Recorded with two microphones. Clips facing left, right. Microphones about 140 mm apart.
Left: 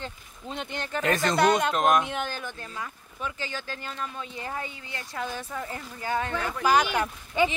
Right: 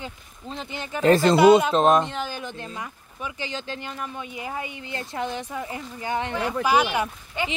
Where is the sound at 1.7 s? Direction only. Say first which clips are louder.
Right 4 dB; 30° right (ahead or behind).